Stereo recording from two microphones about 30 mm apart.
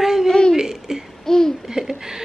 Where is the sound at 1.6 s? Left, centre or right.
Centre.